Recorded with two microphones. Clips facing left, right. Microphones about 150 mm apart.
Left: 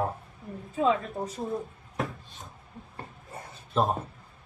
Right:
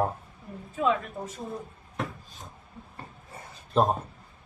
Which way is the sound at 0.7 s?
35° left (ahead or behind).